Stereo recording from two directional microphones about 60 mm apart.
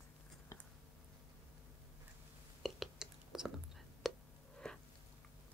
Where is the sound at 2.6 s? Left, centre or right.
Centre.